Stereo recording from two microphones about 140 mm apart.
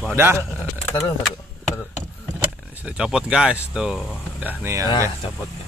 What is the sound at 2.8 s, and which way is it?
Speech, 5° right (ahead or behind).